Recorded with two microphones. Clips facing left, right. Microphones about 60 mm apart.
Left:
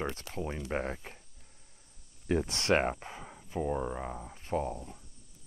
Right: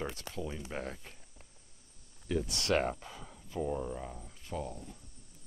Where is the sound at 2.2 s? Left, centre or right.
Left.